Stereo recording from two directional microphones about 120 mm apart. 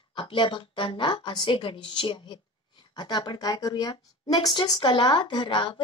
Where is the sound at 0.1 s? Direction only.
45° left (ahead or behind).